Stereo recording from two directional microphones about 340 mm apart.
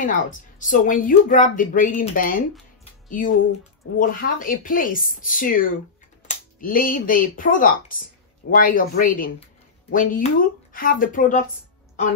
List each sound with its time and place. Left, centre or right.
0.0 s speech: left
2.8 s music: left
4.0 s speech: left